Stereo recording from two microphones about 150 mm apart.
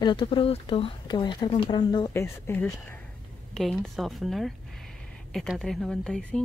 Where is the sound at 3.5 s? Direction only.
Centre (ahead or behind).